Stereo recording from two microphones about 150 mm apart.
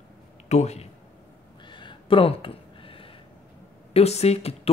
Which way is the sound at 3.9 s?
45° left (ahead or behind).